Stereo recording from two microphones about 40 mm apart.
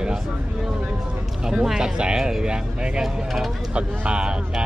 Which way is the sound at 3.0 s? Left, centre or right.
Centre.